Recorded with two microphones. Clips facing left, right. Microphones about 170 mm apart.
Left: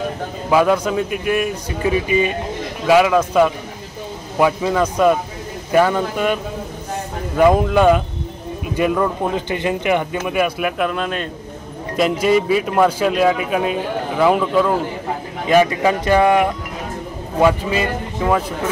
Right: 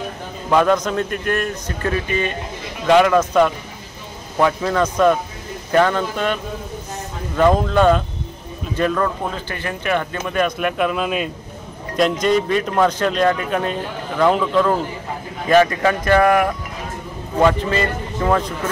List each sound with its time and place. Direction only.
0.5 s a man's voice: 5° left (ahead or behind)
12.0 s a man's voice: 5° left (ahead or behind)